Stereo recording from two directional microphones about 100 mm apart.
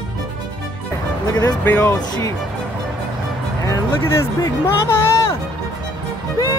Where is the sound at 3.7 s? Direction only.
30° left (ahead or behind).